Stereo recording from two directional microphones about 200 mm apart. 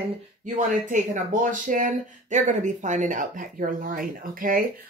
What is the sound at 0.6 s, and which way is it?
Speech, 40° right (ahead or behind).